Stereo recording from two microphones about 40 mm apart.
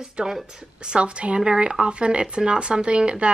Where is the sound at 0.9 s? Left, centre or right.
Right.